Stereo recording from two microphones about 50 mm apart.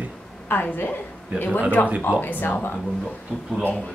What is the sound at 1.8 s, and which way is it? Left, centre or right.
Speech, left.